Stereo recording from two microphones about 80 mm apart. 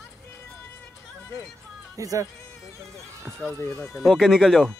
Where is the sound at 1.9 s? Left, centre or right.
Right.